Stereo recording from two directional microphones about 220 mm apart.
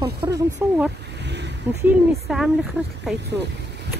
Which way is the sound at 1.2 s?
50° right (ahead or behind).